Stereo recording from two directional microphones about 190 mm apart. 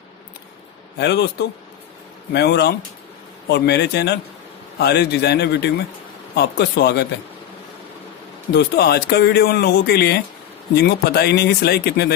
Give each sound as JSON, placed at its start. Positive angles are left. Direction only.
{"t": 0.9, "sound": "speech", "side_deg": 60}
{"t": 8.5, "sound": "speech", "side_deg": 60}